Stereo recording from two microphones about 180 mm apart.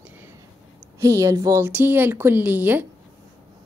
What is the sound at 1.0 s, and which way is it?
A woman's voice, 15° right (ahead or behind).